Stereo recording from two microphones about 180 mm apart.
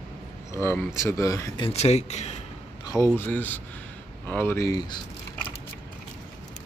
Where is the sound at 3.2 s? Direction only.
10° left (ahead or behind).